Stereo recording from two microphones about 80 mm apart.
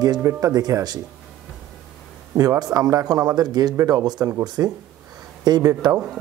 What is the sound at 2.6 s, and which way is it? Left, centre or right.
Speech, right.